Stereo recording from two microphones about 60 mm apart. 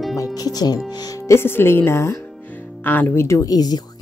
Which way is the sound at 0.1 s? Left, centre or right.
Left.